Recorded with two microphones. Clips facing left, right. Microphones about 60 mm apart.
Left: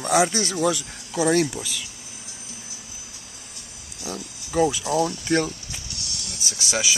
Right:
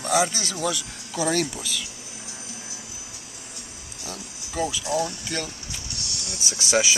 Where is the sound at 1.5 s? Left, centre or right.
Centre.